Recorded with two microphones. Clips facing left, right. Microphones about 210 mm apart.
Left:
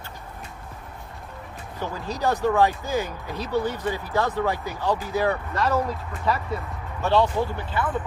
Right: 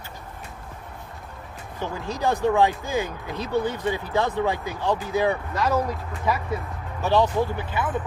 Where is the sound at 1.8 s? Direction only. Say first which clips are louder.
Even; 20° right (ahead or behind).